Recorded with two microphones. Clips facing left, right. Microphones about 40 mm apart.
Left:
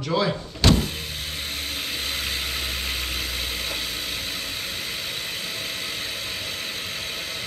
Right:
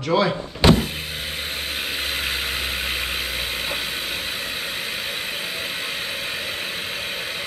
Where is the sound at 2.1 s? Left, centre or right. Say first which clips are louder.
Right 3 dB; right.